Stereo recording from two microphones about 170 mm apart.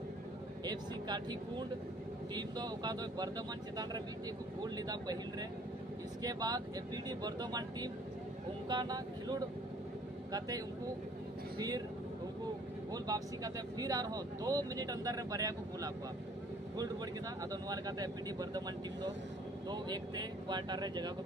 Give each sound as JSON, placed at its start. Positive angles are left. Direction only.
{"t": 0.7, "sound": "speech", "side_deg": -25}
{"t": 2.3, "sound": "speech", "side_deg": -25}
{"t": 6.2, "sound": "speech", "side_deg": -20}
{"t": 11.5, "sound": "speech", "side_deg": -20}
{"t": 12.9, "sound": "speech", "side_deg": -20}
{"t": 17.5, "sound": "speech", "side_deg": -20}
{"t": 19.7, "sound": "speech", "side_deg": -25}